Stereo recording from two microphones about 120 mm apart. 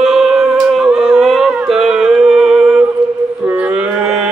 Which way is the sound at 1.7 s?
5° right (ahead or behind).